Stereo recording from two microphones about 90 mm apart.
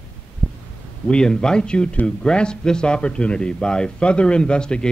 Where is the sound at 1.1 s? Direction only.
10° left (ahead or behind).